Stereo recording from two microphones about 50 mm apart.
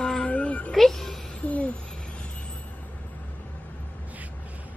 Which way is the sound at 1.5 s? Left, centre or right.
Left.